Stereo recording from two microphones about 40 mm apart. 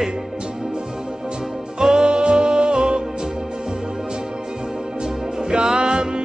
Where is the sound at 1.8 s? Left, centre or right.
Centre.